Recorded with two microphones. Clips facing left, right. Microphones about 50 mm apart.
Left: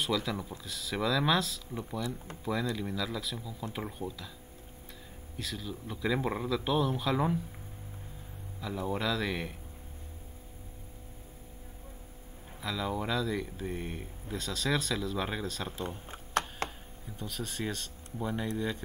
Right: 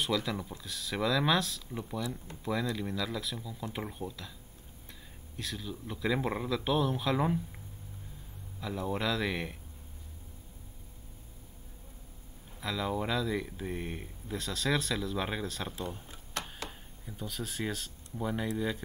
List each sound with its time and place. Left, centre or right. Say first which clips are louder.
0.0 s speech: even; centre
5.4 s speech: even; centre
8.5 s speech: even; centre
12.5 s speech: right 1 dB; centre
16.6 s chopping: left 6 dB; left
17.2 s speech: even; centre